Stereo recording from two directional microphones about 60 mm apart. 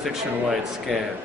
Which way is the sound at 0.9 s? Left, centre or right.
Centre.